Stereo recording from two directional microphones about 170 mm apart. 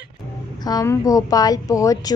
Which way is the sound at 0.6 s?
25° left (ahead or behind).